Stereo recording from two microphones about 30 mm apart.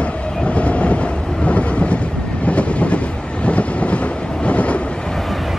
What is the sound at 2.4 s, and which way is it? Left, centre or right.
Train, left.